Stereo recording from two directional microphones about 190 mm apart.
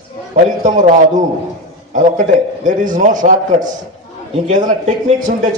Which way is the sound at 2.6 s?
40° right (ahead or behind).